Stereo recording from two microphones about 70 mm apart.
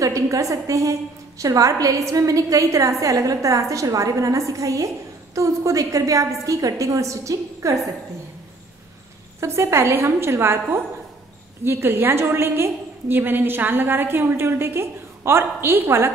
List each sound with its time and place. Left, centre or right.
0.0 s a woman's voice: right
9.4 s a woman's voice: right